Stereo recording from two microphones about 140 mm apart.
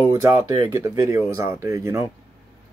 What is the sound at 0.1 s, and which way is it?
Speech, 20° right (ahead or behind).